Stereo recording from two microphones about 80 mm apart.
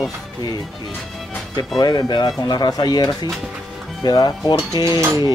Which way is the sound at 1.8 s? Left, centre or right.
Left.